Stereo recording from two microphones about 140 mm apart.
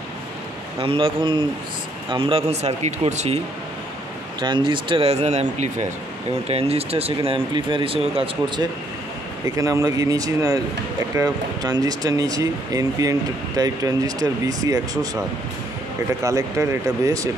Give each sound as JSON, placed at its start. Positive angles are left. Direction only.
{"t": 0.7, "sound": "speech", "side_deg": -40}
{"t": 4.4, "sound": "speech", "side_deg": -35}
{"t": 9.6, "sound": "speech", "side_deg": -25}